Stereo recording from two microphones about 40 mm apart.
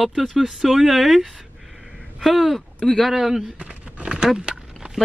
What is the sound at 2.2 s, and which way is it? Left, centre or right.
Speech, centre.